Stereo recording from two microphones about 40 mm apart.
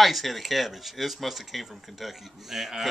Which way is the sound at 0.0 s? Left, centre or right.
Centre.